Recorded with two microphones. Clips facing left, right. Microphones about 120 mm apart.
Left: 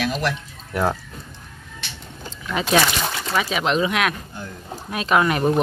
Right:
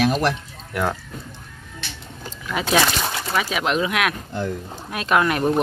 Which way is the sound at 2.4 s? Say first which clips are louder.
Left 1 dB; centre (ahead or behind).